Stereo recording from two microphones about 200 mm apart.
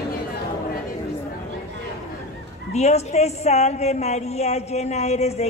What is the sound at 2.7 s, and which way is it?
A woman's voice, 35° left (ahead or behind).